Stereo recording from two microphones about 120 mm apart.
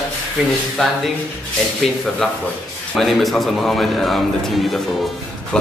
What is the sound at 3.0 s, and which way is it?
A man's voice, centre (ahead or behind).